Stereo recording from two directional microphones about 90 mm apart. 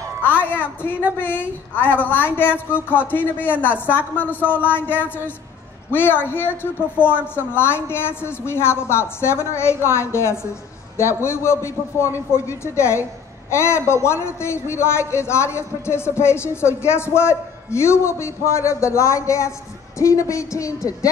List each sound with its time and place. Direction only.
0.2 s music: 20° left (ahead or behind)
0.6 s a man's voice: 20° left (ahead or behind); by 21.1 s 35° left (ahead or behind)